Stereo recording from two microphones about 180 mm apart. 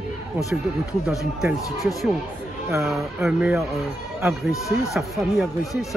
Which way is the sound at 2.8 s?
Centre (ahead or behind).